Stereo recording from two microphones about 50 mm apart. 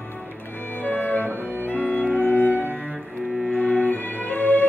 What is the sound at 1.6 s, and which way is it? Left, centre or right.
Music, left.